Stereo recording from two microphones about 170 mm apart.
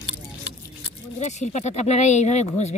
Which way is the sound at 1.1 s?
45° left (ahead or behind).